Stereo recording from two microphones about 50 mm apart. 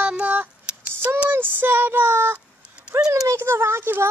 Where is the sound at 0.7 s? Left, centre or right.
Right.